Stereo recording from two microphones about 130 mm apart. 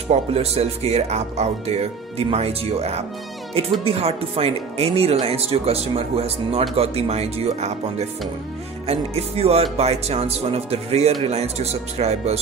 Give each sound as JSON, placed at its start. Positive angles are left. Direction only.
{"t": 0.1, "sound": "speech", "side_deg": -50}